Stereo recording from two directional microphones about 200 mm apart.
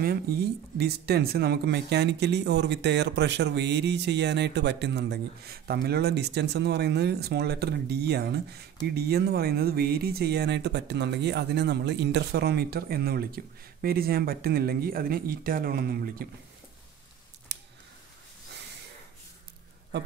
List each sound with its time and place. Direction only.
0.0 s speech: 50° right (ahead or behind)